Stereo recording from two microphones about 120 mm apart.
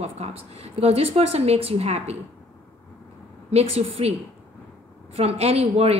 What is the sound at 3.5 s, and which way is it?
Speech, 60° right (ahead or behind).